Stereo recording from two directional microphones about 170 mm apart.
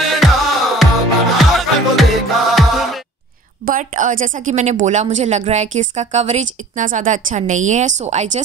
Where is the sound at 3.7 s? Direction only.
50° right (ahead or behind).